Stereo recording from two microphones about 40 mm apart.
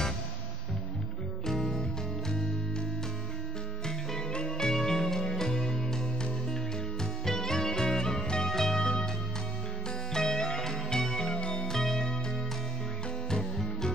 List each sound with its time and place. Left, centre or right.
1.4 s music: centre
3.8 s music: centre
10.1 s music: centre
13.3 s music: centre